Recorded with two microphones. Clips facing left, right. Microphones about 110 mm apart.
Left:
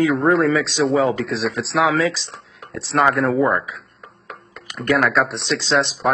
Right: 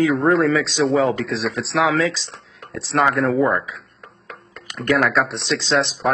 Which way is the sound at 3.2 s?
25° left (ahead or behind).